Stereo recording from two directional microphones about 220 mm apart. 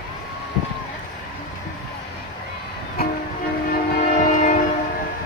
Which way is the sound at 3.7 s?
35° left (ahead or behind).